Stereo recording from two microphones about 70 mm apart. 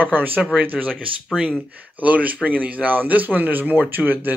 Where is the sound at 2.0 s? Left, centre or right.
Right.